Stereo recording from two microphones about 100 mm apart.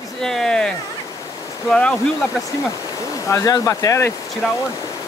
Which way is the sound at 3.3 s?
35° left (ahead or behind).